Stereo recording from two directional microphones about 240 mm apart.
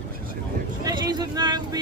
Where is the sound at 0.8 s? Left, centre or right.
Centre.